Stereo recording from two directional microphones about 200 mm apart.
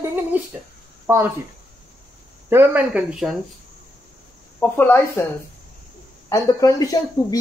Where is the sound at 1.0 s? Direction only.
10° right (ahead or behind).